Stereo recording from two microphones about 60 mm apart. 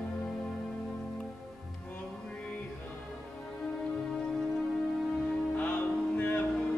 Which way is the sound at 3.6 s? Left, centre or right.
Centre.